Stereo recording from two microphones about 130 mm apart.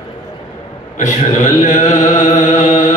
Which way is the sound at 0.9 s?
70° left (ahead or behind).